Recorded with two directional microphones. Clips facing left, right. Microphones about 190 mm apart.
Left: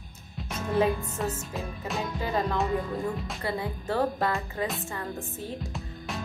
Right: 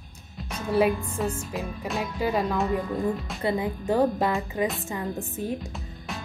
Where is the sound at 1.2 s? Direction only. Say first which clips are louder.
Right 3 dB; centre (ahead or behind).